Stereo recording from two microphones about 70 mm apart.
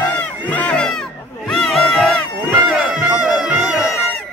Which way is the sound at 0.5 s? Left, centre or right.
Centre.